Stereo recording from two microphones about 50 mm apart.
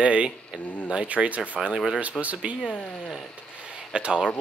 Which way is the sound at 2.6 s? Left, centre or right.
Left.